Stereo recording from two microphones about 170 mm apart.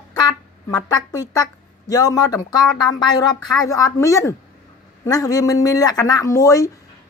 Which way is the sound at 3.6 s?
20° left (ahead or behind).